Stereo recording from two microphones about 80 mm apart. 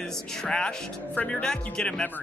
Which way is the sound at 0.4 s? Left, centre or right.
Centre.